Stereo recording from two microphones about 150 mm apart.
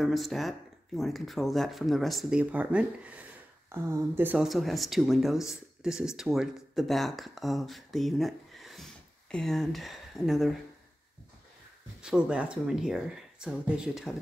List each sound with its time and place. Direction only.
0.0 s speech: centre (ahead or behind)
4.5 s speech: centre (ahead or behind)
12.0 s speech: 5° right (ahead or behind)